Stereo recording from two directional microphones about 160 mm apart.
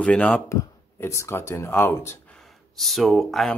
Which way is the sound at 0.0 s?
10° left (ahead or behind).